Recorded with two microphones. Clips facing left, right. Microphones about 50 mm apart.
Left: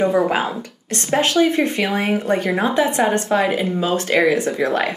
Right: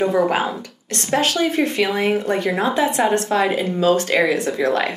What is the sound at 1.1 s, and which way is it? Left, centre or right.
Speech, centre.